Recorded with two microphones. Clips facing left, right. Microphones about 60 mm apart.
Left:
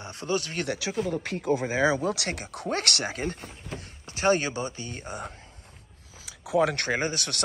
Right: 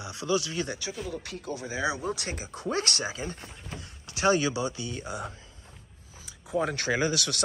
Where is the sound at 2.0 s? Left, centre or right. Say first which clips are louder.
Left 4 dB; left.